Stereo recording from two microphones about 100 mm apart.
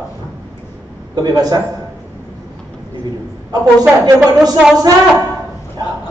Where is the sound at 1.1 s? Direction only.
40° right (ahead or behind).